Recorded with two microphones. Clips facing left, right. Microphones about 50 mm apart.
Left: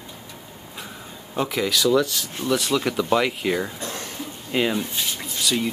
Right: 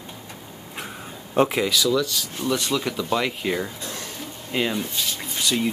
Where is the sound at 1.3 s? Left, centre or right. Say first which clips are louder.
Right 6 dB; right.